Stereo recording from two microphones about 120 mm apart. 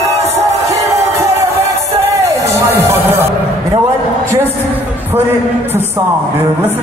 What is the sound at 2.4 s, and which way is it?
Music, 25° right (ahead or behind).